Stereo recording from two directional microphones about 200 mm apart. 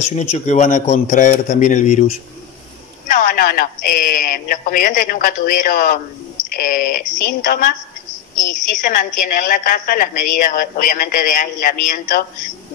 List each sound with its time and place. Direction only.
0.0 s a man's voice: 35° left (ahead or behind)